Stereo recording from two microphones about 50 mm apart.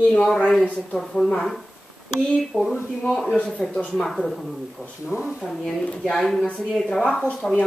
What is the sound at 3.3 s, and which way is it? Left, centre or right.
Speech, centre.